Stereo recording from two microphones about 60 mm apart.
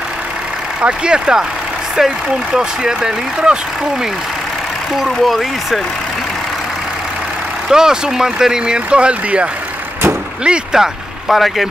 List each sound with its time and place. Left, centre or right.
0.8 s speech: centre
4.9 s speech: centre
7.7 s speech: centre
11.2 s speech: centre